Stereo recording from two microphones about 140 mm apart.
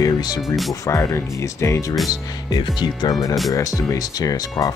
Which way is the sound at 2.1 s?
30° left (ahead or behind).